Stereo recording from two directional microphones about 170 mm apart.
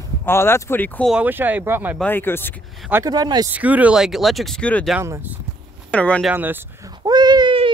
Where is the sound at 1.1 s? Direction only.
10° right (ahead or behind).